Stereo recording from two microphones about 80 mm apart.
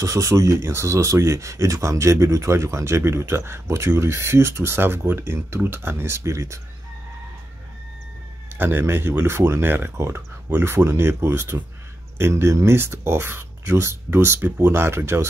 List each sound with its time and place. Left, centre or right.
0.0 s speech: right
8.5 s speech: right